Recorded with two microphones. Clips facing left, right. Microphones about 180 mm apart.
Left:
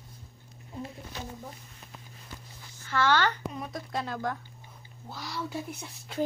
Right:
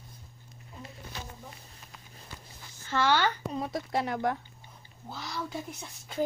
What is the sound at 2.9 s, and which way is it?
Speech, 15° right (ahead or behind).